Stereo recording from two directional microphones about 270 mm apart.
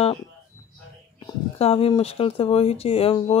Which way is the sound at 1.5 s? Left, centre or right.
Left.